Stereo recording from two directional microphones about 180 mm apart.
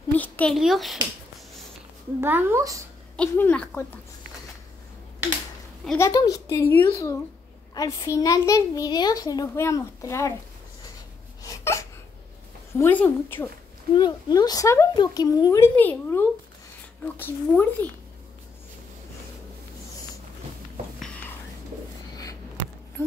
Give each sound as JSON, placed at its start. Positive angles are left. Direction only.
{"t": 0.1, "sound": "a sound", "side_deg": 10}
{"t": 0.6, "sound": "speech", "side_deg": 0}
{"t": 2.1, "sound": "speech", "side_deg": -10}
{"t": 3.2, "sound": "a child's voice", "side_deg": 10}
{"t": 5.9, "sound": "a child's voice", "side_deg": 20}
{"t": 11.4, "sound": "a sound", "side_deg": 15}
{"t": 12.7, "sound": "a child's voice", "side_deg": 10}
{"t": 13.9, "sound": "a woman's voice", "side_deg": 25}
{"t": 15.7, "sound": "a child's voice", "side_deg": 10}
{"t": 22.1, "sound": "a sound", "side_deg": 20}